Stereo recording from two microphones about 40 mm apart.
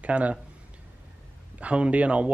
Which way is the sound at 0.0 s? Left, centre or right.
Right.